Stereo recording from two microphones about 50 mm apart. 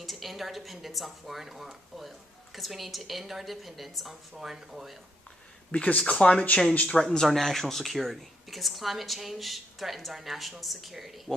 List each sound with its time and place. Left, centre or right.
0.0 s speech: centre
5.7 s speech: left
7.1 s speech: centre